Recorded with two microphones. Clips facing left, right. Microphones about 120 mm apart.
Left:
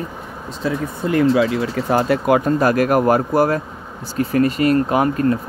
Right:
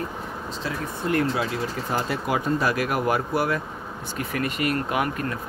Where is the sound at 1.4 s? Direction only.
65° left (ahead or behind).